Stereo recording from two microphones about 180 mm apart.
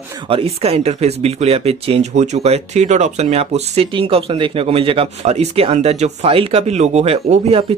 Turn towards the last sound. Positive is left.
turn(degrees=-35)  # may be behind; listen again after turning